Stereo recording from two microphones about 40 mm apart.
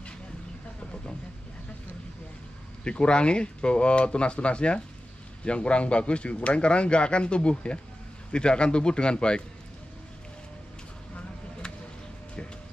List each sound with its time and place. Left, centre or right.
2.8 s speech: left